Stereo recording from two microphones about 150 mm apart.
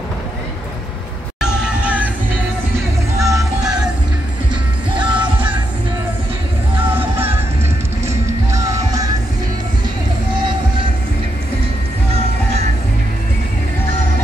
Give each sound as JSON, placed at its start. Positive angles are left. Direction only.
{"t": 1.4, "sound": "music", "side_deg": -10}
{"t": 3.2, "sound": "music", "side_deg": -20}
{"t": 4.9, "sound": "music", "side_deg": -10}
{"t": 7.0, "sound": "music", "side_deg": -15}